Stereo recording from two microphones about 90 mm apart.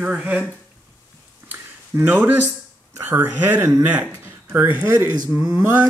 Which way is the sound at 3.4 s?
20° right (ahead or behind).